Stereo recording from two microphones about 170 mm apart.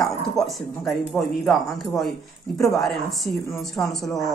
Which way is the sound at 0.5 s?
Centre (ahead or behind).